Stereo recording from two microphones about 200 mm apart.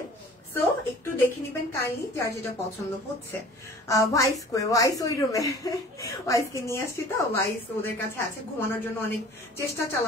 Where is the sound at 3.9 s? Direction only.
15° left (ahead or behind).